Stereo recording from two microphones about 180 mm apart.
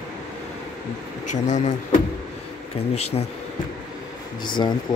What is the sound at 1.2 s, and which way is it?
Speech, 40° left (ahead or behind).